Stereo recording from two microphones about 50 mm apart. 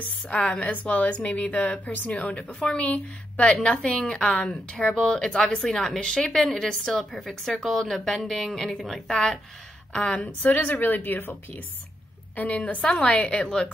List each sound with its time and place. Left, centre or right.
0.4 s a woman's voice: left; by 9.2 s centre
9.9 s a woman's voice: left
10.5 s a woman's voice: left
12.4 s a woman's voice: left